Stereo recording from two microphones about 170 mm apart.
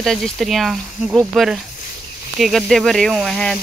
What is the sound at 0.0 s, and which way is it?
Speech, centre (ahead or behind).